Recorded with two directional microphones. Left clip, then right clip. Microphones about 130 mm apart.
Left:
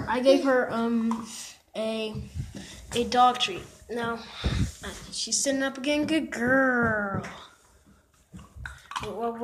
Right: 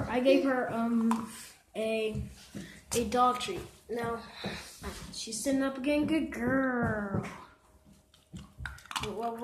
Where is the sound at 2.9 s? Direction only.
15° left (ahead or behind).